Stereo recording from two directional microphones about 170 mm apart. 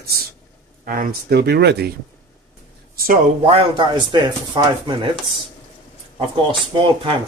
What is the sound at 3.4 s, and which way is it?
Speech, 30° right (ahead or behind).